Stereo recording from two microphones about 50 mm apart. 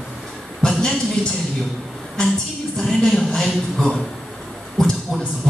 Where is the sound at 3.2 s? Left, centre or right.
Centre.